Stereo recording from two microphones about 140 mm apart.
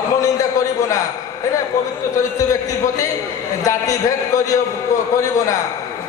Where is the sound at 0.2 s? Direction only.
25° left (ahead or behind).